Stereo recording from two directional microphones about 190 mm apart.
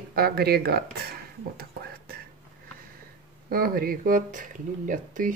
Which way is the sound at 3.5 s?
50° right (ahead or behind).